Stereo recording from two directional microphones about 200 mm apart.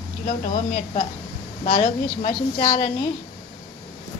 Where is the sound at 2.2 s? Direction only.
25° left (ahead or behind).